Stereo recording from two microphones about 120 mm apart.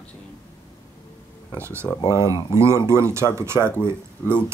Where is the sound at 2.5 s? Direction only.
25° right (ahead or behind).